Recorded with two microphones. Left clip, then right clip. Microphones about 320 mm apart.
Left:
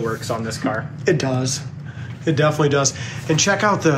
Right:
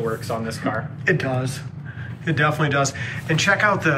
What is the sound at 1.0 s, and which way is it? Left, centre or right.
Speech, centre.